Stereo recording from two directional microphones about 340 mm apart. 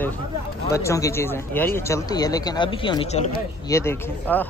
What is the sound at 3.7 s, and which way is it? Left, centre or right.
Speech, centre.